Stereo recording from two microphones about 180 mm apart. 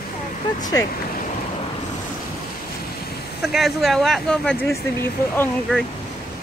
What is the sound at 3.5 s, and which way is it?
Speech, centre (ahead or behind).